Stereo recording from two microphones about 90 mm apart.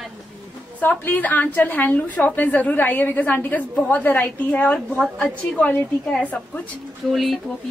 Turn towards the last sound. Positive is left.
turn(degrees=0)  # may be behind; listen again after turning